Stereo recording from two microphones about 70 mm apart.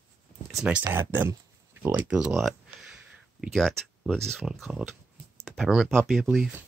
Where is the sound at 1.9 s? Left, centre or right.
Centre.